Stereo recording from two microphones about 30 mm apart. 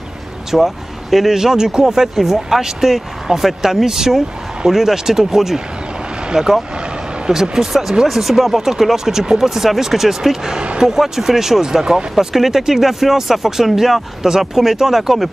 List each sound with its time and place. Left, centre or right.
0.5 s speech: centre